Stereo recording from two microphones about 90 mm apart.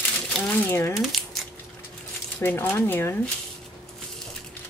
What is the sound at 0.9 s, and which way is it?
Crumpling, centre (ahead or behind).